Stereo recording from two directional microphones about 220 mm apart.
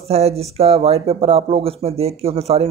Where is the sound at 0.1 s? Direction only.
30° right (ahead or behind).